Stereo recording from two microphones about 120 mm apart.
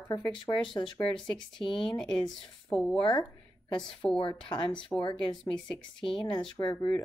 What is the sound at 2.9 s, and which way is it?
Speech, 40° left (ahead or behind).